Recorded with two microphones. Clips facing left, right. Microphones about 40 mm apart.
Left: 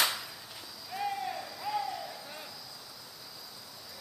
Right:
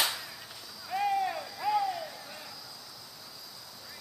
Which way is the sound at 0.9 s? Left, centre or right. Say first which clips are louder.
Right 6 dB; centre.